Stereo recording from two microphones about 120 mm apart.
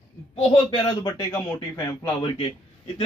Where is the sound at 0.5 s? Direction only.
35° left (ahead or behind).